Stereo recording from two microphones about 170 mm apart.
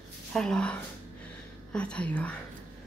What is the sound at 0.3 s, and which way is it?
A woman's voice, 5° left (ahead or behind).